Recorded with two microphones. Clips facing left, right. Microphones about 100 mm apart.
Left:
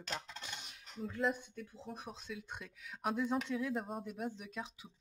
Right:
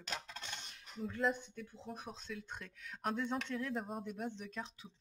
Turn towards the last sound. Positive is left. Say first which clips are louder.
# even
turn(degrees=5)  # may be behind; listen again after turning